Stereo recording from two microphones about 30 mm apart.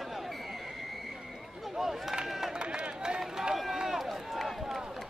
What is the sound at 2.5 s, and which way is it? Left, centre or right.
Run, right.